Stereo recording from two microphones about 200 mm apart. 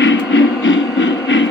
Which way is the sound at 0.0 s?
65° left (ahead or behind).